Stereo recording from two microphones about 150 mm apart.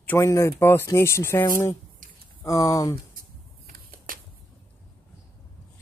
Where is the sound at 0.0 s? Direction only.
15° left (ahead or behind).